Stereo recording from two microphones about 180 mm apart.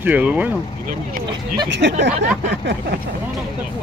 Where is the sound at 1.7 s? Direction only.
80° right.